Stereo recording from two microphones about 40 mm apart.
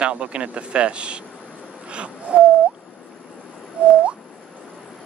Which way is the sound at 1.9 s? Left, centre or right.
Right.